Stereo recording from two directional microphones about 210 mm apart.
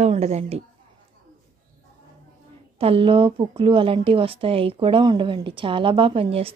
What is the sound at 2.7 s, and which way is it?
A woman's voice, 25° right (ahead or behind).